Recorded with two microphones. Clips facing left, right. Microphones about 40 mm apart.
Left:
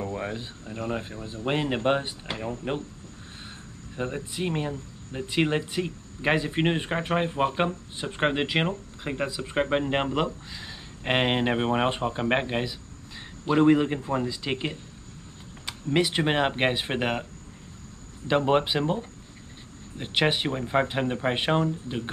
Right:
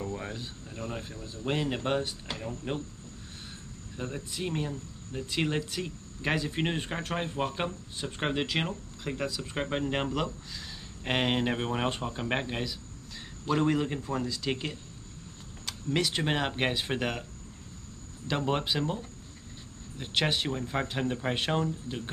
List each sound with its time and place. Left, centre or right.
0.0 s speech: left
3.9 s speech: left